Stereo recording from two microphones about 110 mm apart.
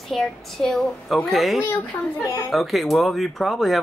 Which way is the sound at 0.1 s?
5° left (ahead or behind).